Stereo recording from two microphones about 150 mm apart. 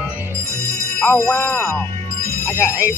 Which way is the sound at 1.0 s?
15° left (ahead or behind).